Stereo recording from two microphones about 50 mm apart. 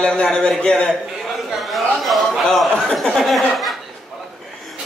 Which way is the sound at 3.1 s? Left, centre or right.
Centre.